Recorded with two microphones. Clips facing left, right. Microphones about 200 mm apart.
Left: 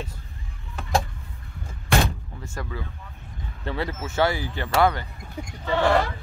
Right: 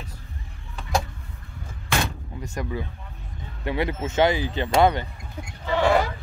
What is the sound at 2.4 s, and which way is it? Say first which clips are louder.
Speech: right 4 dB; 20° right (ahead or behind).